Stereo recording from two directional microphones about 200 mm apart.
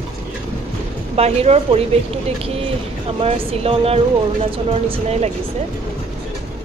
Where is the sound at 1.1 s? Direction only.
30° right (ahead or behind).